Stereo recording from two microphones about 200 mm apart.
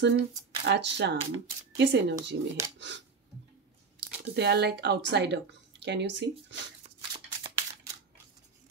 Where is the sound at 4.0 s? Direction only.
55° right (ahead or behind).